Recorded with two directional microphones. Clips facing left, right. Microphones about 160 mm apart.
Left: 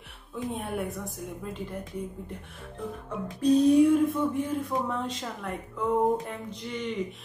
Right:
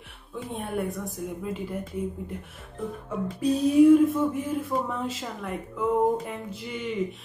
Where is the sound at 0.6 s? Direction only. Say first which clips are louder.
Right 2 dB; centre (ahead or behind).